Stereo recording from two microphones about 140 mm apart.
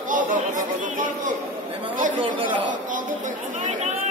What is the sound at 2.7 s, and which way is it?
Chatter, 70° right (ahead or behind).